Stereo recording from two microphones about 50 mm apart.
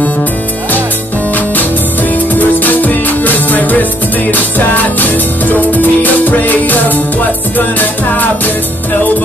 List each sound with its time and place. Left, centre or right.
1.3 s music: left